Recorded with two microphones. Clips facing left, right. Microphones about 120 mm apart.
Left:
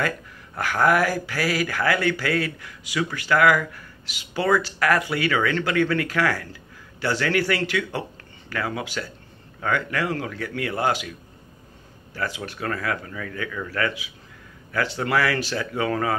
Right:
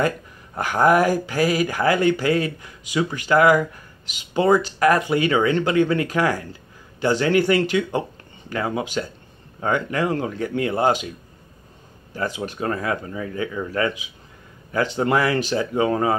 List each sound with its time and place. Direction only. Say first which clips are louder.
0.6 s speech: right 3 dB; 20° right (ahead or behind)